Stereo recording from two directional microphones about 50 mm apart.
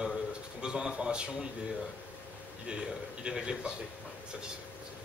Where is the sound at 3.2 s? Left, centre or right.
Centre.